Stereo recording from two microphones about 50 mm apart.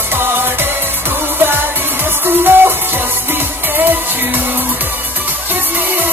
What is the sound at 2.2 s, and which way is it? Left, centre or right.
Music, right.